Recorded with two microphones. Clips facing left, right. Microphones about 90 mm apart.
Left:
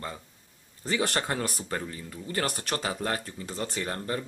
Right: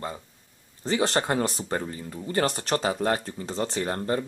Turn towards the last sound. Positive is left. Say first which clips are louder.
# right 5 dB
turn(degrees=-30)  # may be behind; listen again after turning